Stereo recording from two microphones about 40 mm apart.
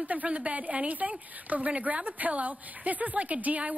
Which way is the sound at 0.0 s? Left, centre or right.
Right.